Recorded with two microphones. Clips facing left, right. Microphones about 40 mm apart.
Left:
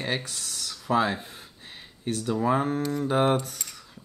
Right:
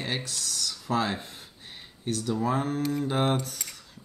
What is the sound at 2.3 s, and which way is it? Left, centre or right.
Speech, centre.